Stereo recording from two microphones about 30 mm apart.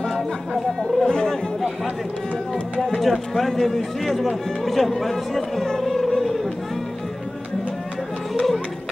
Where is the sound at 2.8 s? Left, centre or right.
Centre.